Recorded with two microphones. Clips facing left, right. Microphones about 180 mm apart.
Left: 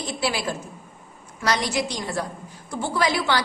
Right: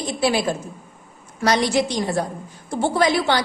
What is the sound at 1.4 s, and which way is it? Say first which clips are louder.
A woman's voice: right 5 dB; 25° right (ahead or behind).